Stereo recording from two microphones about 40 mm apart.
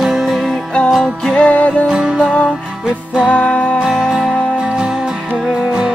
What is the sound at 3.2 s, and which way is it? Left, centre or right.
Music, left.